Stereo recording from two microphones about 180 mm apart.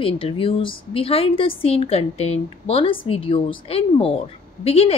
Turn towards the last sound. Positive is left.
turn(degrees=35)  # may be behind; listen again after turning